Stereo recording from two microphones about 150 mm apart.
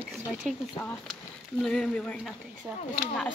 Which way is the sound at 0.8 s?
10° left (ahead or behind).